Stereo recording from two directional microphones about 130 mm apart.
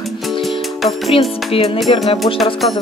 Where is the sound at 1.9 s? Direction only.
45° left (ahead or behind).